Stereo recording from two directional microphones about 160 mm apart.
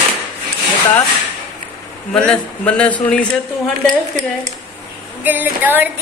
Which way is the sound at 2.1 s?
5° left (ahead or behind).